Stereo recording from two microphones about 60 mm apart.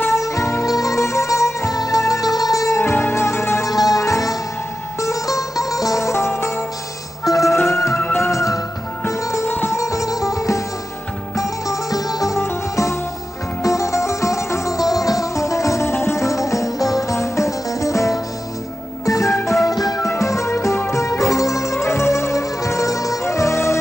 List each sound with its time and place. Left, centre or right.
0.1 s music: left
0.7 s music: left
1.8 s music: left
2.8 s music: left
3.6 s music: left
8.2 s music: left
12.4 s music: left
15.9 s music: left
19.7 s music: left
20.0 s music: left
23.2 s music: left